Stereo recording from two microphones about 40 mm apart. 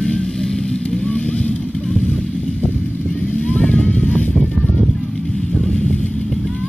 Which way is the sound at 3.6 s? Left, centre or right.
Left.